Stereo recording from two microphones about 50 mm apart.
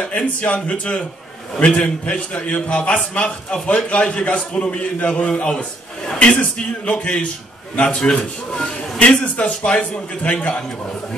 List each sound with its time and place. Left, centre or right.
0.0 s a man's voice: left
5.2 s a man's voice: centre
9.2 s a man's voice: left